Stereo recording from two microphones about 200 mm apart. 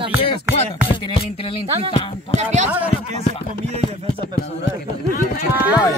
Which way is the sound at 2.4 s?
35° right (ahead or behind).